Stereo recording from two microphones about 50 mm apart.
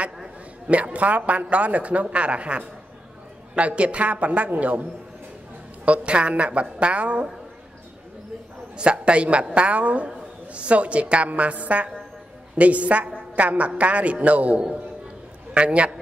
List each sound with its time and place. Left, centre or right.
0.7 s a man's voice: right
5.9 s a man's voice: right
8.7 s a man's voice: right